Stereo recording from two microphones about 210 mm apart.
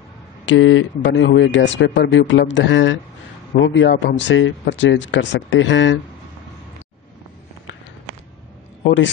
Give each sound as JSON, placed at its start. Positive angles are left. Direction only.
{"t": 0.5, "sound": "speech", "side_deg": 65}
{"t": 8.8, "sound": "a man's voice", "side_deg": 60}